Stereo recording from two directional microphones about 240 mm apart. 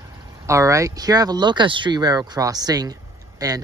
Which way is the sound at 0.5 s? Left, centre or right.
Centre.